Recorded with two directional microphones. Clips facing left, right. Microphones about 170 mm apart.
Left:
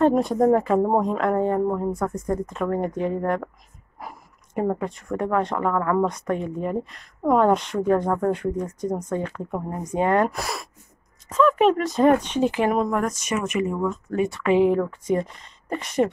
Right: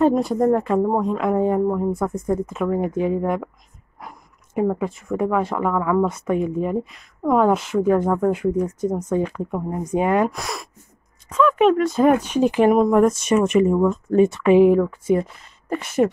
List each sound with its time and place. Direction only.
0.0 s speech: centre (ahead or behind)
4.0 s a sound: 5° left (ahead or behind)
4.6 s speech: 5° right (ahead or behind)
10.3 s speech: centre (ahead or behind); by 13.0 s 15° right (ahead or behind)
13.0 s speech: 30° right (ahead or behind)
14.8 s speech: 5° right (ahead or behind)